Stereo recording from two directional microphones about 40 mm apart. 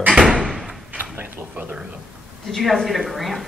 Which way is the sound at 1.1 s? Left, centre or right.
Right.